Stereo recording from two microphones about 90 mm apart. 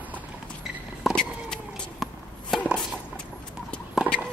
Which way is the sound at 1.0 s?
5° right (ahead or behind).